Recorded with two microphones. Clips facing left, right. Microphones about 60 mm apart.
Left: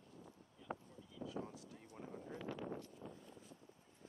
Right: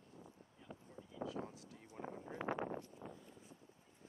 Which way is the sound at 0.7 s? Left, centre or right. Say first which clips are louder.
Left 5 dB; left.